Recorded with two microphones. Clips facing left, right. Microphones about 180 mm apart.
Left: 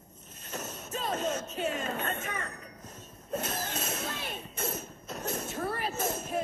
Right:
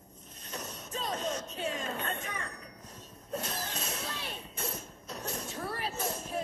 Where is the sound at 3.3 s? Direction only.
45° left (ahead or behind).